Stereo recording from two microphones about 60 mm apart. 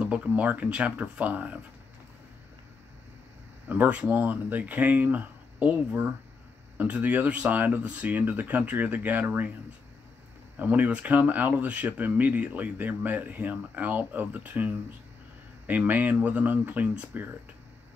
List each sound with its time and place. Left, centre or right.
0.0 s speech: right
3.6 s speech: right
6.8 s speech: right
10.6 s speech: right